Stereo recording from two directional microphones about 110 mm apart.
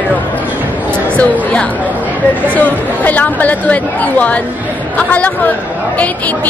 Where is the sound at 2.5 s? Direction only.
15° left (ahead or behind).